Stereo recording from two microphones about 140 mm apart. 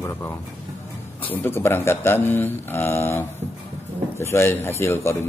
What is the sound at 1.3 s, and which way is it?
Speech, 15° left (ahead or behind).